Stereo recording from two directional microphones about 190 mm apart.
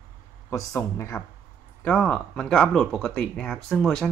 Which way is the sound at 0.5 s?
15° left (ahead or behind).